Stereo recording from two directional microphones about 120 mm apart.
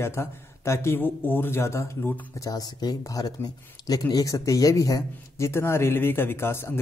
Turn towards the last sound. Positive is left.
turn(degrees=20)  # may be behind; listen again after turning